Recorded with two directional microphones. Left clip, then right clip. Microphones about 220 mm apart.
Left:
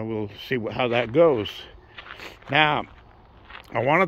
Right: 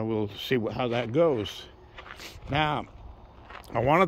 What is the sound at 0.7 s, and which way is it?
Speech, 10° left (ahead or behind).